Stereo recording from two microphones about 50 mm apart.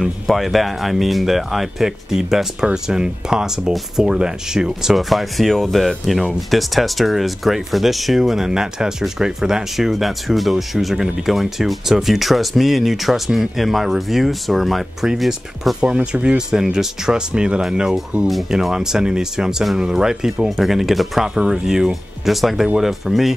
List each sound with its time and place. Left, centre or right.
0.3 s speech: centre
15.8 s speech: centre